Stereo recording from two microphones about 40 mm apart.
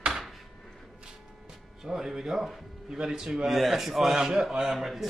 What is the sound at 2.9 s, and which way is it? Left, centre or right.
Speech, centre.